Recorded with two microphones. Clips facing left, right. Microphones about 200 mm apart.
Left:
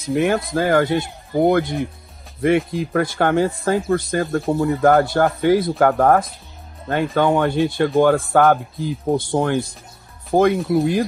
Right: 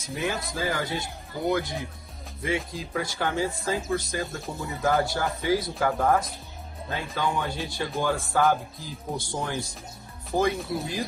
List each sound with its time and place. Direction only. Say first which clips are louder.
0.1 s speech: left 12 dB; 60° left (ahead or behind)